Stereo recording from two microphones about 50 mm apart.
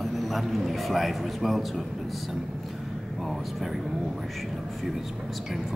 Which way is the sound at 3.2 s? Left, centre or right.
Centre.